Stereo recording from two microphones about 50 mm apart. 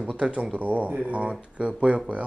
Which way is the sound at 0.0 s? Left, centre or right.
Right.